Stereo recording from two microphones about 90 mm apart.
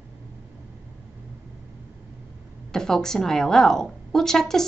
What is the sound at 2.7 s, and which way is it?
A woman's voice, 5° left (ahead or behind).